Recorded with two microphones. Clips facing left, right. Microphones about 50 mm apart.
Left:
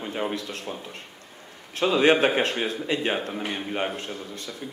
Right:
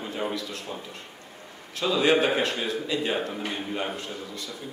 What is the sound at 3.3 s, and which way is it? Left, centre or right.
Speech, centre.